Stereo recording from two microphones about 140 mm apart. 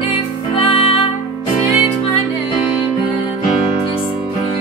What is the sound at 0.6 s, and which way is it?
Music, 40° left (ahead or behind).